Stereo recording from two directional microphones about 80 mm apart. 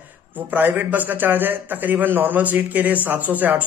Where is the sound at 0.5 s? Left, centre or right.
Right.